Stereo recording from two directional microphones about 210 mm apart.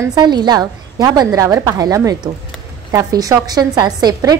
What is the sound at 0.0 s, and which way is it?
A woman's voice, 20° right (ahead or behind).